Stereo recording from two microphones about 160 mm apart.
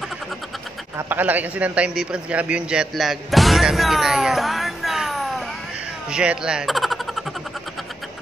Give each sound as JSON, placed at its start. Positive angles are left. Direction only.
{"t": 0.9, "sound": "a man's voice", "side_deg": -10}